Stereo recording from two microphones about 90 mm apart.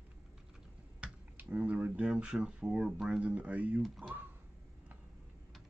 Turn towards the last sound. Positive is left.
turn(degrees=-20)  # may be behind; listen again after turning